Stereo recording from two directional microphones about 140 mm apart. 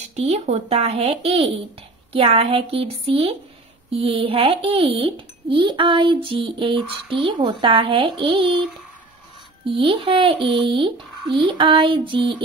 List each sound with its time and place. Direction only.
0.1 s speech: 50° right (ahead or behind)
9.7 s speech: 35° right (ahead or behind)